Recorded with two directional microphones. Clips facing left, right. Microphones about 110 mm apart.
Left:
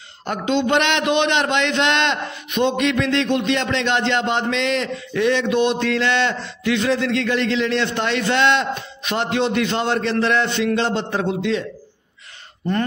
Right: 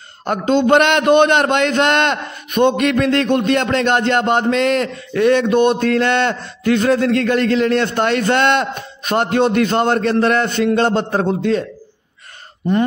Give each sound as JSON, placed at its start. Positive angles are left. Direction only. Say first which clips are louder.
{"t": 0.2, "sound": "a man's voice", "louder": "right 5 dB", "side_deg": -45}